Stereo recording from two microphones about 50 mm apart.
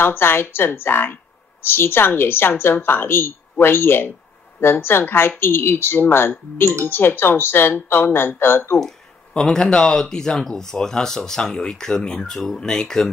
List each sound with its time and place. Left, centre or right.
0.0 s a woman's voice: left
8.7 s speech: centre